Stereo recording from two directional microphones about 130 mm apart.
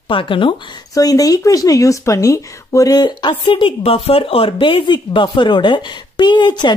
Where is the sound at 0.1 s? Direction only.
40° left (ahead or behind).